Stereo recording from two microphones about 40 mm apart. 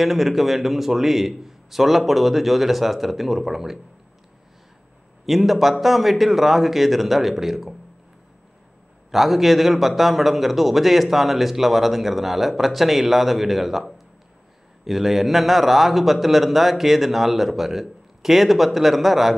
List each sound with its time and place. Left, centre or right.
0.0 s a man's voice: centre
5.2 s a man's voice: centre
9.1 s a man's voice: centre